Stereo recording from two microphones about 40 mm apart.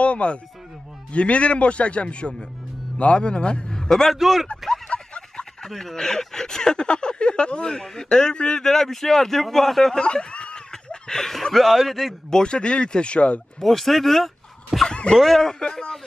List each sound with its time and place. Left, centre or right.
0.0 s a man's voice: left
3.7 s a sound: centre
4.1 s speech: centre
4.8 s a sound: left
5.7 s speech: centre
8.6 s a man's voice: centre
9.9 s speech: left; by 12.2 s centre
12.3 s speech: left
13.6 s speech: centre
14.9 s a sound: left
15.1 s a man's voice: centre
15.6 s speech: centre